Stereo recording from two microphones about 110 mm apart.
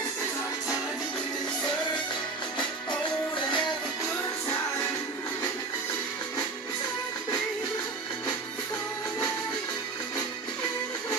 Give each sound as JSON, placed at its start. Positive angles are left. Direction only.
{"t": 3.3, "sound": "music", "side_deg": 45}